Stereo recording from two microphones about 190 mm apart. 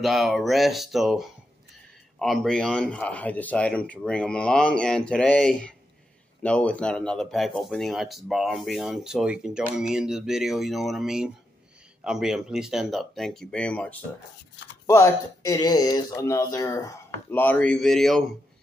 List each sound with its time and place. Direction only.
0.0 s speech: centre (ahead or behind)